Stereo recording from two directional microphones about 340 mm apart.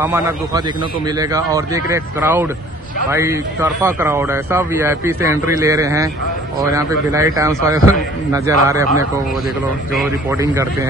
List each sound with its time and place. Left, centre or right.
0.0 s a man's voice: centre
9.9 s a man's voice: centre